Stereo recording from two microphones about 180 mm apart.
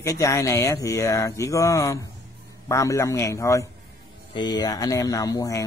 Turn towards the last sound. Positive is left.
turn(degrees=20)  # may be behind; listen again after turning